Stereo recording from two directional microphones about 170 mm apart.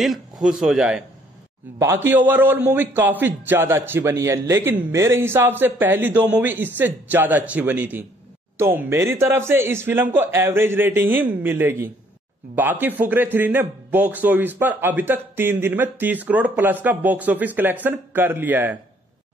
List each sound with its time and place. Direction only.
0.0 s a man's voice: centre (ahead or behind)